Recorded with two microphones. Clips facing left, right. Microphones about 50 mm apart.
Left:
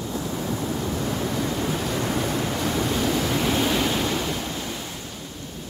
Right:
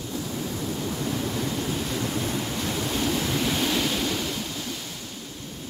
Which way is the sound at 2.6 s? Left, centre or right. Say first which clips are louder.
Left 3 dB; left.